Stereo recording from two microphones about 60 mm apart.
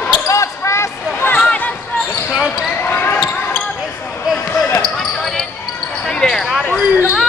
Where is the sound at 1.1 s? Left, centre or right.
Left.